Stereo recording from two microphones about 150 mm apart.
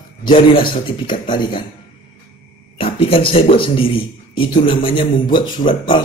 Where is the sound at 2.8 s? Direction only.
35° left (ahead or behind).